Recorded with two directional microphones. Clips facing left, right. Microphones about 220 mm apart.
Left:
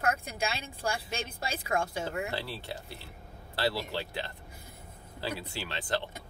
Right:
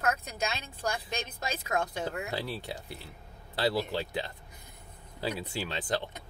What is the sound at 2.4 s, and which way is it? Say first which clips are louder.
Speech: right 2 dB; 15° right (ahead or behind).